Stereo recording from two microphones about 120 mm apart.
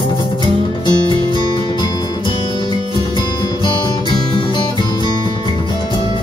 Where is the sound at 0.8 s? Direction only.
40° left (ahead or behind).